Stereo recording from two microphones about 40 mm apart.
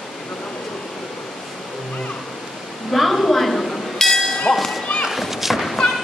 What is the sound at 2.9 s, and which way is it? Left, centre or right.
Dishes, centre.